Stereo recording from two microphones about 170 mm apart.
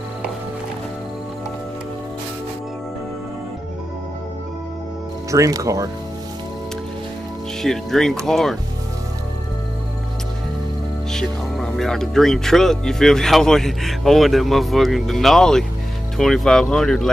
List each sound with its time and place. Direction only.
5.3 s speech: 20° right (ahead or behind)
7.6 s speech: centre (ahead or behind)
11.1 s speech: 5° left (ahead or behind)